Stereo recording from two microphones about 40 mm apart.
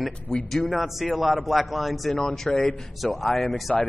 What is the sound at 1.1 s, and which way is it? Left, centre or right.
Speech, centre.